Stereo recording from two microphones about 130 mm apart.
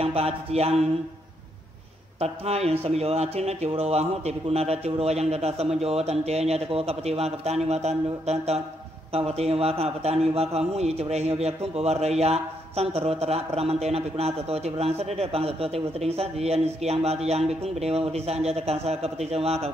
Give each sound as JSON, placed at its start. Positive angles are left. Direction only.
{"t": 0.0, "sound": "a man's voice", "side_deg": -50}
{"t": 2.1, "sound": "a man's voice", "side_deg": -55}